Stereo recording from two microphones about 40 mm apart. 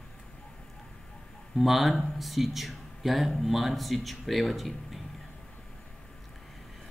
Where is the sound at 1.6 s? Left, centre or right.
Centre.